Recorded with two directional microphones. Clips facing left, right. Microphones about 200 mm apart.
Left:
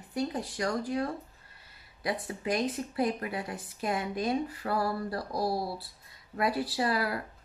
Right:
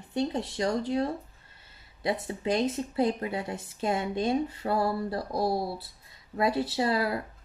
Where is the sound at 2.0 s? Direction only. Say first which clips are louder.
Right 3 dB; 25° right (ahead or behind).